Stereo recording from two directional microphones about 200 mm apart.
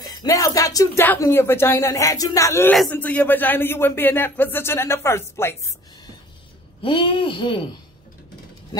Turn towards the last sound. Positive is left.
turn(degrees=25)  # may be behind; listen again after turning